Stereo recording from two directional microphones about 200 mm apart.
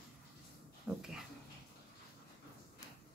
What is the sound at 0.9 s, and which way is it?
Speech, 5° right (ahead or behind).